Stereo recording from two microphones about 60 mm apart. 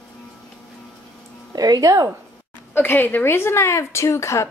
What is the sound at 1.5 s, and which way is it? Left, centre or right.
Speech, right.